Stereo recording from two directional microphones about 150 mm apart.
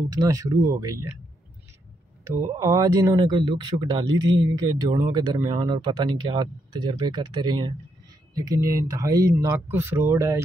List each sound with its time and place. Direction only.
0.1 s speech: 20° right (ahead or behind)
2.6 s speech: 25° right (ahead or behind)
8.4 s speech: 20° right (ahead or behind)